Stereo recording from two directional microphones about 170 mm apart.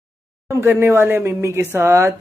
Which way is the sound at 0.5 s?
15° right (ahead or behind).